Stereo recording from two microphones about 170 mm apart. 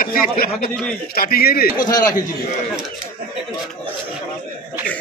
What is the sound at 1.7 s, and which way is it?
Speech, 25° left (ahead or behind).